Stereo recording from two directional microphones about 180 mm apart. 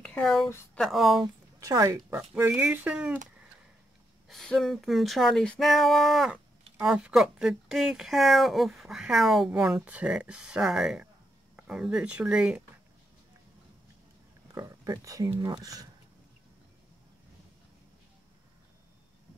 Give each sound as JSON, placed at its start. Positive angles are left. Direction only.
{"t": 0.0, "sound": "speech", "side_deg": 5}
{"t": 1.2, "sound": "speech", "side_deg": -20}
{"t": 4.3, "sound": "speech", "side_deg": 0}
{"t": 14.5, "sound": "speech", "side_deg": -15}